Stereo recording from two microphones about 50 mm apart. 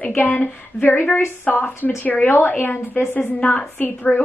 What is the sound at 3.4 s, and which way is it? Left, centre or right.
Speech, left.